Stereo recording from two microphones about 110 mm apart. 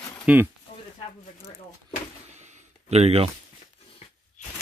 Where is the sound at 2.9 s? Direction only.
70° right (ahead or behind).